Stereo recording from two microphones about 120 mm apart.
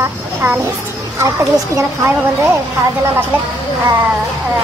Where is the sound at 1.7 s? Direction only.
25° right (ahead or behind).